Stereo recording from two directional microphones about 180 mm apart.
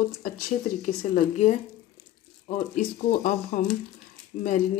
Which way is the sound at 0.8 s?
45° left (ahead or behind).